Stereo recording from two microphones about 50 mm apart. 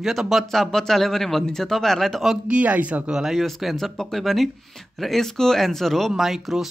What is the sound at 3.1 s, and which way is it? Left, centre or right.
Speech, centre.